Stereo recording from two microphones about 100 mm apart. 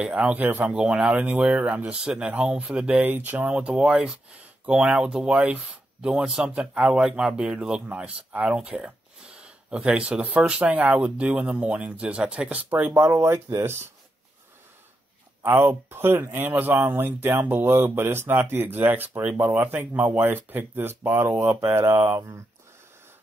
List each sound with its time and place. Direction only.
0.0 s speech: 10° right (ahead or behind)
15.4 s speech: 20° right (ahead or behind)